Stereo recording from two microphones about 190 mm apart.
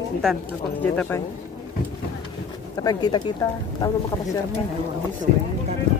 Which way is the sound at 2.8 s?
20° left (ahead or behind).